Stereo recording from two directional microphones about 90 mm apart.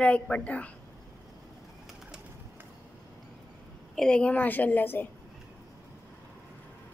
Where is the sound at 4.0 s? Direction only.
10° left (ahead or behind).